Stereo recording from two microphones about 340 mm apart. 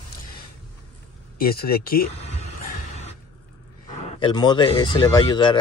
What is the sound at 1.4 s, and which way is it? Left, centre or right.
Speech, left.